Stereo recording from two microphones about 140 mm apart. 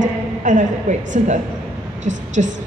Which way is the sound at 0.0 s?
60° right (ahead or behind).